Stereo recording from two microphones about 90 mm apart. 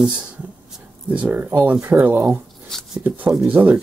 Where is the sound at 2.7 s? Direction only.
5° left (ahead or behind).